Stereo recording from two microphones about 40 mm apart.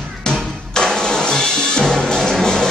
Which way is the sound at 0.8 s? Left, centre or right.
Centre.